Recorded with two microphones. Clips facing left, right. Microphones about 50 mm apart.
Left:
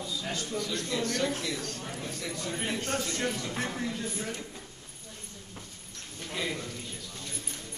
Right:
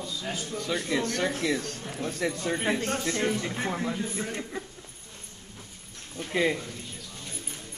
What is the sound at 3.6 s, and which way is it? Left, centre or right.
Speech, right.